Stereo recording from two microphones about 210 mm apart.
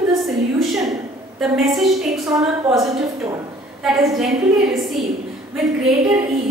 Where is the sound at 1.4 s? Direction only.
Centre (ahead or behind).